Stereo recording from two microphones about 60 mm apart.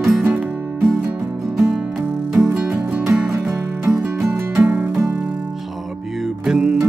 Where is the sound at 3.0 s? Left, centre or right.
Right.